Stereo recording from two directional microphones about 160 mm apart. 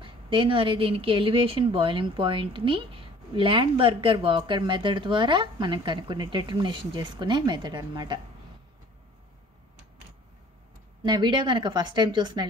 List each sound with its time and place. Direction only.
0.0 s a woman's voice: 30° right (ahead or behind)
11.0 s a woman's voice: 30° right (ahead or behind)